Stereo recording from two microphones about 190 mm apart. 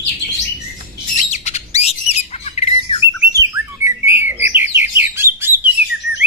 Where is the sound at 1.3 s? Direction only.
35° left (ahead or behind).